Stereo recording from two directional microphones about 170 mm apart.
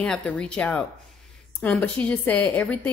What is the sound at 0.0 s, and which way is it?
A woman's voice, 5° left (ahead or behind).